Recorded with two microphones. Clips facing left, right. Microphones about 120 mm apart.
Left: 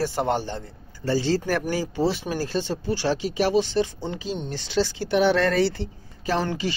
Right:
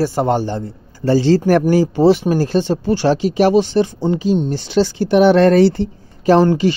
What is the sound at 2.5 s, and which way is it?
Speech, 65° right (ahead or behind).